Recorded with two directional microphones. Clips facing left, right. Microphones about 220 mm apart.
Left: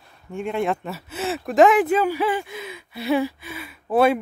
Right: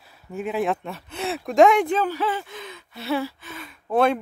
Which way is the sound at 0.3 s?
5° right (ahead or behind).